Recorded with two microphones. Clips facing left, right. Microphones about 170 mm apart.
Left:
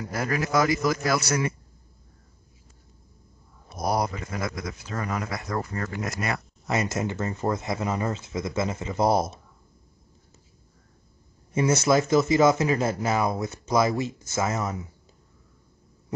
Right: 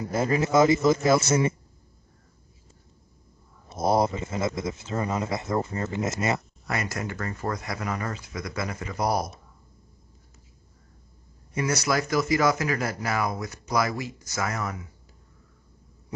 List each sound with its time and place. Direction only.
0.0 s speech: 25° right (ahead or behind)
3.6 s speech: 25° right (ahead or behind)
6.7 s speech: 20° left (ahead or behind)
11.5 s speech: 25° left (ahead or behind)